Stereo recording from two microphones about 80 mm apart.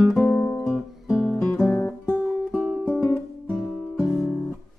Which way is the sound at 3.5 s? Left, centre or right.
Centre.